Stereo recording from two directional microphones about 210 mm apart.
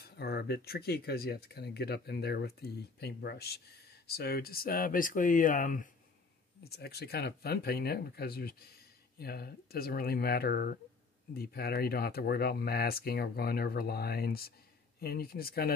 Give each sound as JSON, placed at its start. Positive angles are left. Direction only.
{"t": 0.0, "sound": "speech", "side_deg": 50}
{"t": 6.6, "sound": "speech", "side_deg": 50}